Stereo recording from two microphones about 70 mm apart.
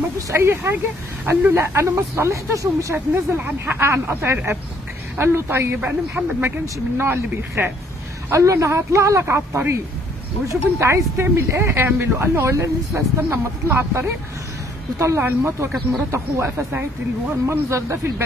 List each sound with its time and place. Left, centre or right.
0.3 s speech: right
3.3 s speech: right
8.3 s a man's voice: right
17.5 s a man's voice: right